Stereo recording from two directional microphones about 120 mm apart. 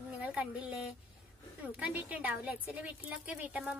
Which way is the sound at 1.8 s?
10° right (ahead or behind).